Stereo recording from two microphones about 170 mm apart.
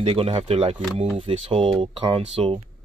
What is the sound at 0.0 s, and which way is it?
Speech, 35° right (ahead or behind).